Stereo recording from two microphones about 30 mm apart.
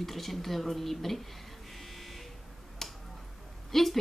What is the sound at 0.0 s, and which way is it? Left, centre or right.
Speech, centre.